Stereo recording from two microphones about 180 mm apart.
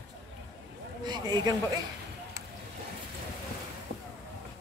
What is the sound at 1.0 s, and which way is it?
Speech, 25° right (ahead or behind).